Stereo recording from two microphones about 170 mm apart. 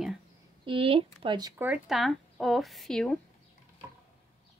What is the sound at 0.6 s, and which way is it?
Speech, 30° right (ahead or behind).